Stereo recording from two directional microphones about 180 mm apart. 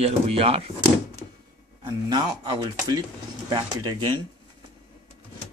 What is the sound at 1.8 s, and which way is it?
Speech, 25° right (ahead or behind).